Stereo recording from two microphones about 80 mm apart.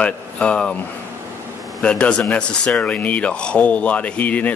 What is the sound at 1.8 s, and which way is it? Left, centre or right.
Speech, centre.